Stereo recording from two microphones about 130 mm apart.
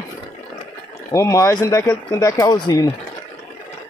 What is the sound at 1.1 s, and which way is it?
Speech, 25° left (ahead or behind).